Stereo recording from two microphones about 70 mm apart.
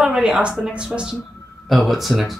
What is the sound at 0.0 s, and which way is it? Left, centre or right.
A woman's voice, centre.